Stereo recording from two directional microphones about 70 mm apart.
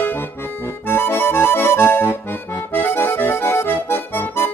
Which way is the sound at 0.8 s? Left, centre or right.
Left.